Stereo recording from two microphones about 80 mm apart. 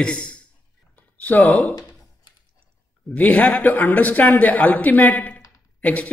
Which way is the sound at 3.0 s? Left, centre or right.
Centre.